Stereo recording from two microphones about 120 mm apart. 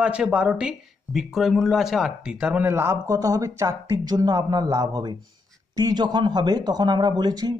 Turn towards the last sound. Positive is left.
turn(degrees=-35)  # may be behind; listen again after turning